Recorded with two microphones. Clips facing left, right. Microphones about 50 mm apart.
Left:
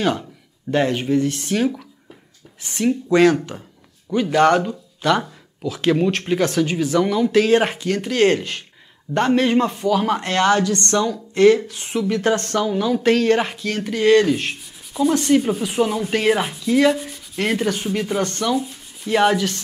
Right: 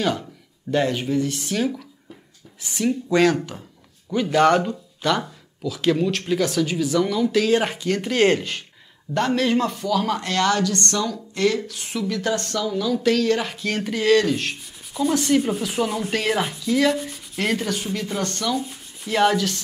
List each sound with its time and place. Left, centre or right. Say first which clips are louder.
0.7 s speech: left 3 dB; left
2.8 s speech: left 3 dB; centre
4.3 s speech: left 1 dB; centre
5.6 s speech: left 2 dB; left
7.9 s speech: left 1 dB; centre
9.1 s speech: left 3 dB; left
14.0 s speech: left 4 dB; centre
17.1 s rub: left 2 dB; centre
17.6 s speech: left 4 dB; centre